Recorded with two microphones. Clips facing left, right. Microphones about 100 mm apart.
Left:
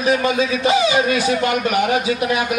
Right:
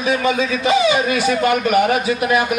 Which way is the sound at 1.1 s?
50° right (ahead or behind).